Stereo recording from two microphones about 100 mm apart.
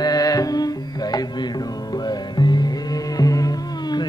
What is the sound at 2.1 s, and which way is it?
Music, 45° left (ahead or behind).